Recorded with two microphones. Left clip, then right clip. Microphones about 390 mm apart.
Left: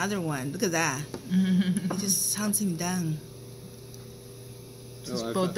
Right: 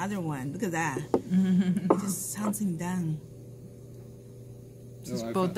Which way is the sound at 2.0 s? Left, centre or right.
Centre.